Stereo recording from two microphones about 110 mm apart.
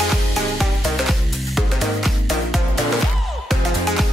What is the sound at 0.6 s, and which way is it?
Music, centre (ahead or behind).